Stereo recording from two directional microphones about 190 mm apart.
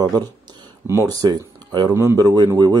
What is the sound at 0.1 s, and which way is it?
Speech, 15° right (ahead or behind).